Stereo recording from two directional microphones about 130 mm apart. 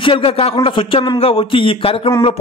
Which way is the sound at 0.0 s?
45° left (ahead or behind).